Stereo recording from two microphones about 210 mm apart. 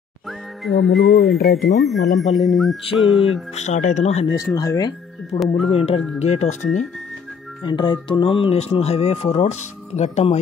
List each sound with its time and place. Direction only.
0.9 s speech: centre (ahead or behind)
1.5 s speech: 50° left (ahead or behind)
1.8 s speech: centre (ahead or behind)
3.5 s speech: 35° left (ahead or behind)
4.6 s speech: 15° left (ahead or behind)
5.7 s speech: 30° left (ahead or behind)
7.6 s speech: 20° left (ahead or behind)